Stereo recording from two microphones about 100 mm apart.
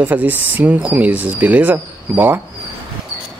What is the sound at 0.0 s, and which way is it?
Speech, 15° right (ahead or behind).